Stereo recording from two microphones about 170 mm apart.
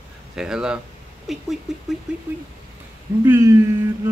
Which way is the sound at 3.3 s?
15° right (ahead or behind).